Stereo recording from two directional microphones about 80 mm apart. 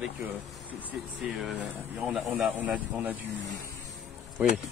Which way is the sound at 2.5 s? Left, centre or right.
Right.